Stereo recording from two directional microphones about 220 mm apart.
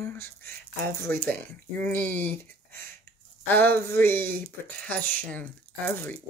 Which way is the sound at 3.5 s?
10° left (ahead or behind).